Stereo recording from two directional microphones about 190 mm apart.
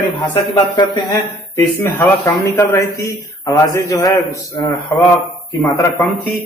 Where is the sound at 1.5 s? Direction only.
15° left (ahead or behind).